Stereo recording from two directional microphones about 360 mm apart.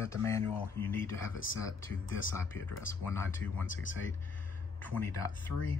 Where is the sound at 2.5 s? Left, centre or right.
Centre.